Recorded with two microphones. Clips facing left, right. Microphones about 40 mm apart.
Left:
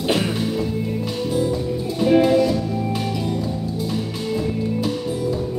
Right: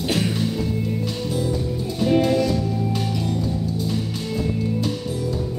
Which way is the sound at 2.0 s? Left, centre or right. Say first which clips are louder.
Left 3 dB; centre.